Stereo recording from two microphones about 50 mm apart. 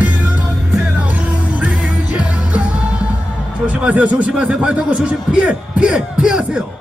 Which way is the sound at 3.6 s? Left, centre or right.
Right.